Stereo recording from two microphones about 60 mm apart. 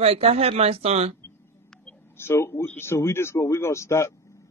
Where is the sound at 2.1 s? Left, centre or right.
Left.